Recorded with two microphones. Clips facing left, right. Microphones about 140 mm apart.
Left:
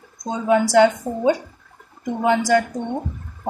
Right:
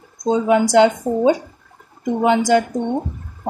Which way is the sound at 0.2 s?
20° right (ahead or behind).